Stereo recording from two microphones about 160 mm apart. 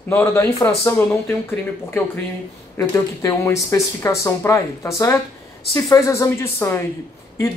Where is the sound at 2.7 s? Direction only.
20° left (ahead or behind).